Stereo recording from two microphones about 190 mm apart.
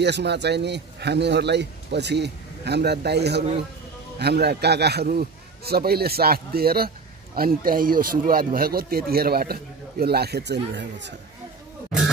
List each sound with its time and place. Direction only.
0.0 s a man's voice: 60° right (ahead or behind)